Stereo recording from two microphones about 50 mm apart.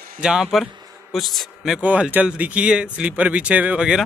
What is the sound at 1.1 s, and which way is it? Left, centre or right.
Speech, centre.